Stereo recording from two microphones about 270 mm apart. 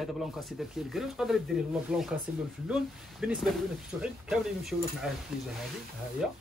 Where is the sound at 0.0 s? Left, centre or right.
Centre.